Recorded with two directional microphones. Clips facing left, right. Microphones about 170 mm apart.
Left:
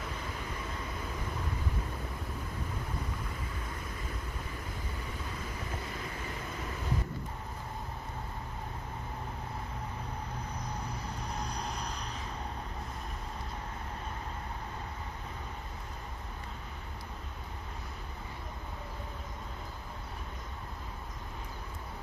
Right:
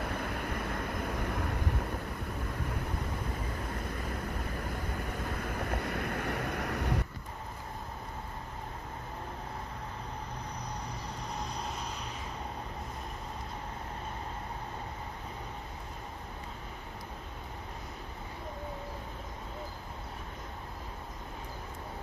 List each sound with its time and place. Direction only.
0.0 s vehicle: 60° right (ahead or behind)
4.7 s vehicle: 55° right (ahead or behind)
11.4 s vehicle: centre (ahead or behind)